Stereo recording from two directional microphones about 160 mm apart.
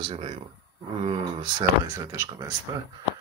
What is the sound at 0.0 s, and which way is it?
Speech, 35° right (ahead or behind).